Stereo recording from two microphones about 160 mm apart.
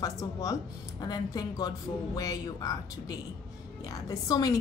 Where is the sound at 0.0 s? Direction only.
20° left (ahead or behind).